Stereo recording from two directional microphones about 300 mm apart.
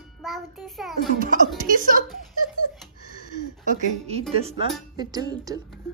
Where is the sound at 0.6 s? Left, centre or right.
Centre.